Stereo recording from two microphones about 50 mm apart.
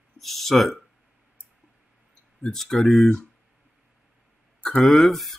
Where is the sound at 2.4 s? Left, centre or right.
Centre.